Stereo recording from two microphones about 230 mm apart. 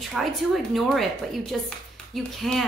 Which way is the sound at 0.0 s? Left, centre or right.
Centre.